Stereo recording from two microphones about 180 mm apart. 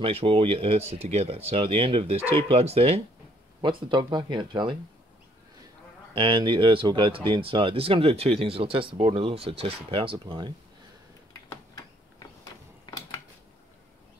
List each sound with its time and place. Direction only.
0.0 s speech: 30° right (ahead or behind)
3.6 s speech: 25° right (ahead or behind)
6.1 s speech: 30° right (ahead or behind)
11.4 s a sound: 20° left (ahead or behind)